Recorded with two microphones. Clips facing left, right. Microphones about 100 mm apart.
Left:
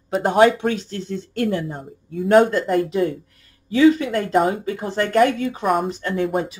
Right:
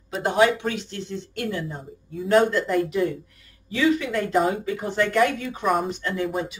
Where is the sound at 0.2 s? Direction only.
40° left (ahead or behind).